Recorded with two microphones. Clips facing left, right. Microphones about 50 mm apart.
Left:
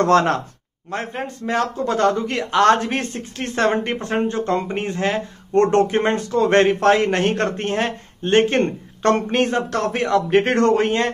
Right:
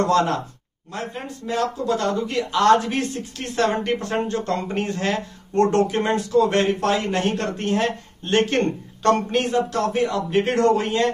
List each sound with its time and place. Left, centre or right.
0.0 s speech: left
0.9 s speech: left
3.7 s speech: left
5.5 s a man's voice: left
8.2 s speech: left
9.3 s a man's voice: left
9.7 s speech: left